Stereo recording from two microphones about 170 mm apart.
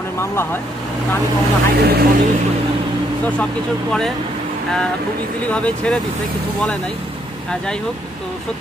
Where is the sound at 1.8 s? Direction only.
70° right (ahead or behind).